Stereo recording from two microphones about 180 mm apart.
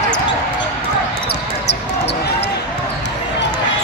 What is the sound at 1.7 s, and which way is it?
Basketball bounce, 70° left (ahead or behind).